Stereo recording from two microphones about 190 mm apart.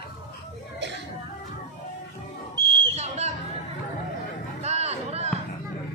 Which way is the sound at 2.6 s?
25° right (ahead or behind).